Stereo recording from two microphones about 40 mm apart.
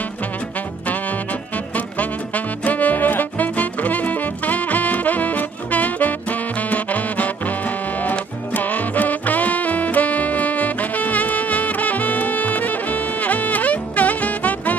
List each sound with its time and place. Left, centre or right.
2.0 s music: left